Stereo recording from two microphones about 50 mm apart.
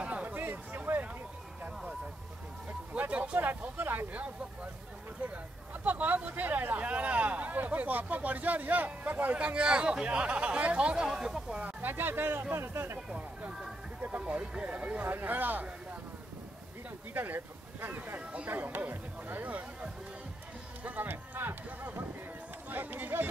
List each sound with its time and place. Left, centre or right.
0.0 s a sound: right
2.9 s a sound: right
3.6 s a sound: right
5.2 s speech: right
9.4 s speech: right
11.1 s speech: centre
11.8 s speech: right
13.5 s speech: centre
14.0 s speech: right
15.0 s speech: right
17.1 s speech: right
20.8 s a sound: right
22.7 s speech: right